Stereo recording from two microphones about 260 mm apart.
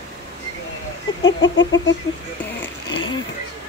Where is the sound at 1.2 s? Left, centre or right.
Left.